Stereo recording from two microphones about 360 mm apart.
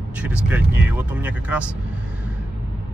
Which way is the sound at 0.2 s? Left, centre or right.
Centre.